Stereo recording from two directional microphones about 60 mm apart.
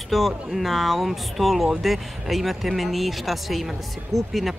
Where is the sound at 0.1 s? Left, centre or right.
Centre.